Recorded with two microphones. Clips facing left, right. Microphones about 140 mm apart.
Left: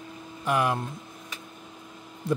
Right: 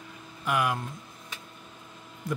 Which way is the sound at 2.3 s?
30° left (ahead or behind).